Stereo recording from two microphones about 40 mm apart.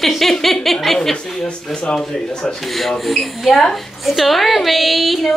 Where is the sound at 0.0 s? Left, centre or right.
Centre.